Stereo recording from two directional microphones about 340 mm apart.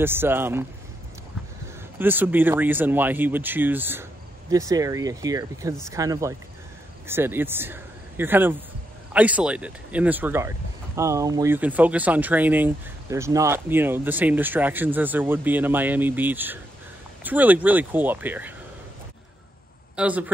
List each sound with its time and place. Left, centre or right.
0.0 s speech: centre
2.0 s speech: centre
20.0 s speech: centre